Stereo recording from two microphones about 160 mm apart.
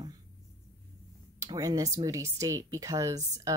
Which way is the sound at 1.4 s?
20° right (ahead or behind).